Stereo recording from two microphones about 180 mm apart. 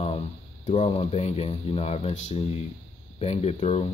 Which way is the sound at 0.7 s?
35° left (ahead or behind).